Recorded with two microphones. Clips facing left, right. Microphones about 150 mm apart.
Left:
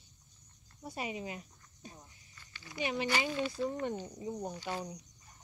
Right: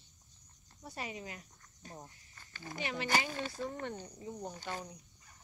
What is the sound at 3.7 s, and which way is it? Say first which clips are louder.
Speech: left 5 dB; 20° left (ahead or behind).